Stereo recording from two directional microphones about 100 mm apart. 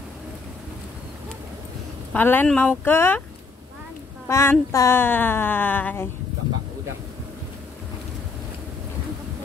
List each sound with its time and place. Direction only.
2.1 s speech: 20° left (ahead or behind)
4.3 s speech: 30° left (ahead or behind)